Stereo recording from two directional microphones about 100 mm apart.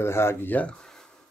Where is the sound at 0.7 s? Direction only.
5° left (ahead or behind).